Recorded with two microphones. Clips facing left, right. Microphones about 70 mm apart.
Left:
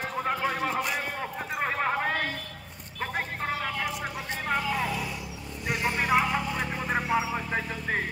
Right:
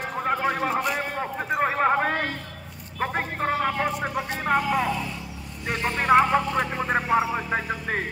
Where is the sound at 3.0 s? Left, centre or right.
Right.